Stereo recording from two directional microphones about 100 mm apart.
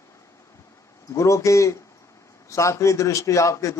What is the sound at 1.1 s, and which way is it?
A man's voice, 30° left (ahead or behind).